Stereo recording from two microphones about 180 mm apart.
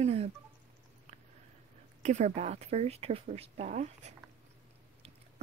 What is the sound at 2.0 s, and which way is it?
Speech, 40° right (ahead or behind).